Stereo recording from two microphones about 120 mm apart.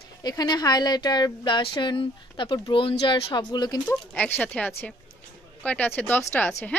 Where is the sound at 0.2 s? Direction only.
35° left (ahead or behind).